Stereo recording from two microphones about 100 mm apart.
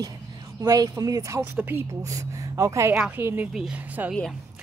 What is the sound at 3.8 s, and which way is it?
Speech, 15° right (ahead or behind).